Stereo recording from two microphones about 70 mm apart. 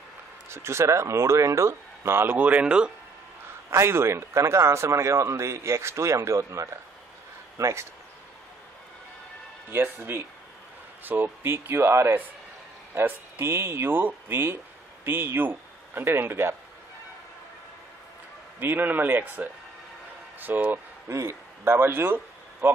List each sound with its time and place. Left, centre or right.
0.5 s a man's voice: right
2.3 s speech: right
3.7 s a man's voice: right
9.7 s speech: right
18.6 s speech: right
21.1 s speech: right